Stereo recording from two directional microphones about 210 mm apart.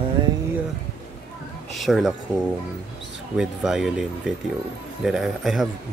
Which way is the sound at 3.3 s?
Centre (ahead or behind).